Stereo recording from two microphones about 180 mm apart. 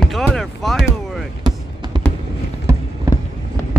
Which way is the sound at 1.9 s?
25° right (ahead or behind).